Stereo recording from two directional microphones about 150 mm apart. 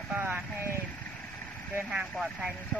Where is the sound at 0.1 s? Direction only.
15° right (ahead or behind).